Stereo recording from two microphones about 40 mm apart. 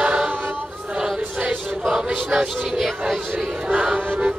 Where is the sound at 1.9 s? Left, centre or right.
Centre.